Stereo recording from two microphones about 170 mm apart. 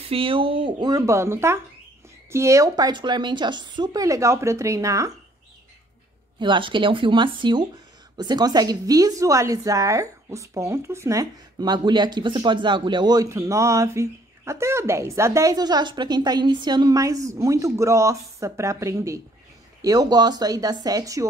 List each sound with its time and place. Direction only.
0.0 s a woman's voice: 30° right (ahead or behind)
6.4 s a woman's voice: 30° right (ahead or behind)